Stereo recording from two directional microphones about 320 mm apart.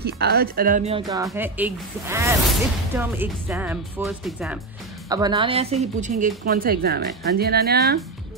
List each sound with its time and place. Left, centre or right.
0.0 s a woman's voice: right; by 4.6 s centre
5.1 s a woman's voice: centre; by 8.0 s right